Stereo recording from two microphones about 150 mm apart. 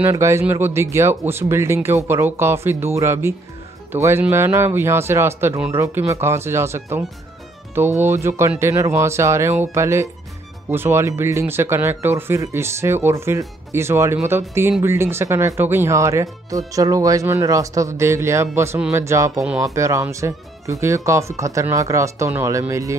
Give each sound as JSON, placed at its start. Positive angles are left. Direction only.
{"t": 0.0, "sound": "speech", "side_deg": -20}
{"t": 8.0, "sound": "speech", "side_deg": -15}